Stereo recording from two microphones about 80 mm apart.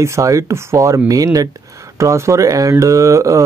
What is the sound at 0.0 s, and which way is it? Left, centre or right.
Speech, right.